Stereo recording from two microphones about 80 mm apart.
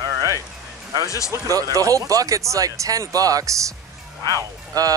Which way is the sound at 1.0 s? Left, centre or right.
Left.